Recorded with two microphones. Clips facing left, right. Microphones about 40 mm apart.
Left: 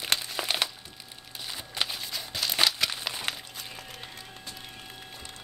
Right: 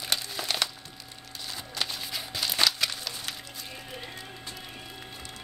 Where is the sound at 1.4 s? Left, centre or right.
Centre.